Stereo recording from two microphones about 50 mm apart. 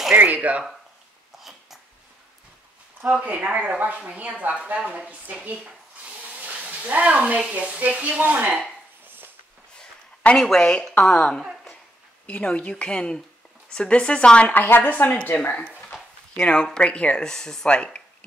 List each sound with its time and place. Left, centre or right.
0.1 s speech: right
3.2 s speech: right
6.2 s frying: right
7.5 s speech: right
9.0 s a sound: right
10.3 s a woman's voice: centre
12.4 s speech: left
14.5 s speech: left
15.9 s a sound: centre
16.3 s a woman's voice: centre